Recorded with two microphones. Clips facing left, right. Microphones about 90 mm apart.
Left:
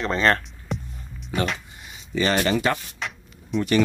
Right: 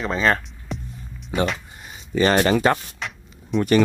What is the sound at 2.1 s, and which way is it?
Speech, 40° right (ahead or behind).